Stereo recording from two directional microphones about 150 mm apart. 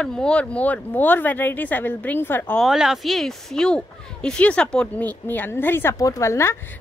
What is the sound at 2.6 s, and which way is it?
Speech, 5° right (ahead or behind).